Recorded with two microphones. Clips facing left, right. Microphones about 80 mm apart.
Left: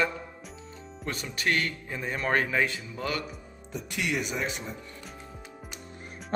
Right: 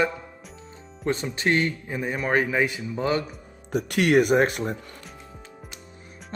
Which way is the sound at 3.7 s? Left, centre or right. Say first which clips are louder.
Right 11 dB; right.